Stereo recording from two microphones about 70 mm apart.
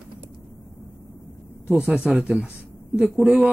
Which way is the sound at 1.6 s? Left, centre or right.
Centre.